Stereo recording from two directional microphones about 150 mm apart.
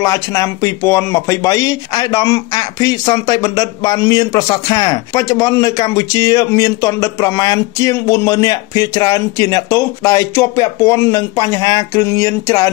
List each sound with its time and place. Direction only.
0.0 s speech: 20° left (ahead or behind)